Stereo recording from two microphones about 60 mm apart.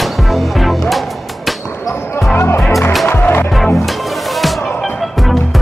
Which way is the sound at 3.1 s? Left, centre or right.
Left.